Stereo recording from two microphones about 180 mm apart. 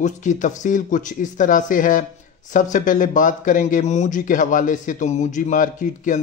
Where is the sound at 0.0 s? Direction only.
45° left (ahead or behind).